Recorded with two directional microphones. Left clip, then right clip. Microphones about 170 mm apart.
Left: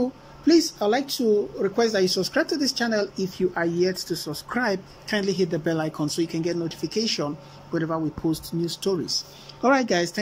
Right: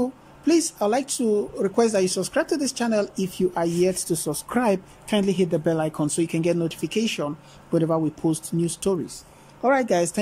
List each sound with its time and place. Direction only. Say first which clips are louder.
0.0 s a woman's voice: left 1 dB; 10° right (ahead or behind)
7.7 s a woman's voice: right 4 dB; 20° right (ahead or behind)
9.6 s speech: even; 5° left (ahead or behind)
9.8 s a woman's voice: right 2 dB; 10° right (ahead or behind)